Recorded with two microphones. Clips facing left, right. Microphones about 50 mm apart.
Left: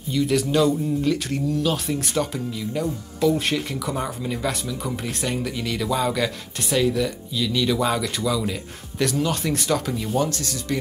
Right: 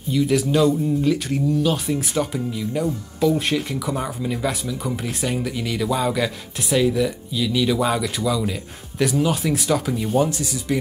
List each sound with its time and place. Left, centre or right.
0.1 s speech: centre
10.0 s speech: centre